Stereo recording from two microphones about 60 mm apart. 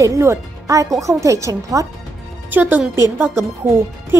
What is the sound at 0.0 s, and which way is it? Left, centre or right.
Speech, right.